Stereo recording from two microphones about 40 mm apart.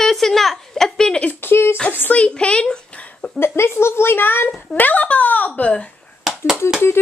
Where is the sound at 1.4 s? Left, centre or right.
Left.